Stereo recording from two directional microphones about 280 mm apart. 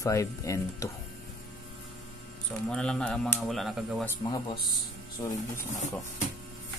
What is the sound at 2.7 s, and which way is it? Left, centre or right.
Speech, centre.